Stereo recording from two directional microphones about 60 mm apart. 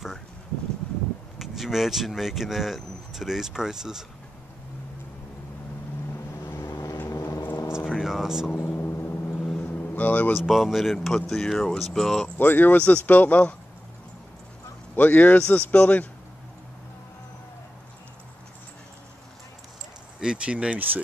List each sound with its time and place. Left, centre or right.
1.4 s speech: centre
6.4 s vehicle: left
7.1 s a sound: left
7.4 s vehicle: left
7.9 s vehicle: centre
8.6 s a sound: left
10.3 s speech: centre
12.4 s speech: left
15.0 s speech: left
20.2 s speech: centre